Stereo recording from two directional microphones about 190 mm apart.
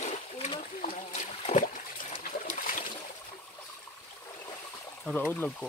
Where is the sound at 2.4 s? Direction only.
45° left (ahead or behind).